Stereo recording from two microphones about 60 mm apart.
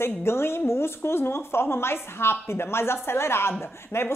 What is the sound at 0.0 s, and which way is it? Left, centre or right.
A woman's voice, left.